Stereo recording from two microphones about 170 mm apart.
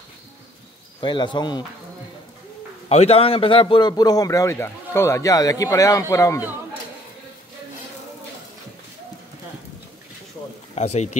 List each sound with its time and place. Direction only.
1.0 s a man's voice: 25° left (ahead or behind)
2.9 s a man's voice: 40° left (ahead or behind); by 6.4 s 20° left (ahead or behind)
10.7 s speech: 40° left (ahead or behind)